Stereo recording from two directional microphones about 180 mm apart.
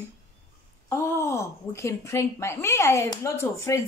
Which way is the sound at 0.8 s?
15° left (ahead or behind).